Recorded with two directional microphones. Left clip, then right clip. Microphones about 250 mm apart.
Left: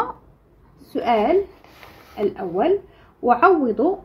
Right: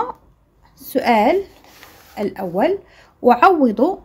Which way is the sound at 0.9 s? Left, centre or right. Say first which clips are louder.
Right 4 dB; right.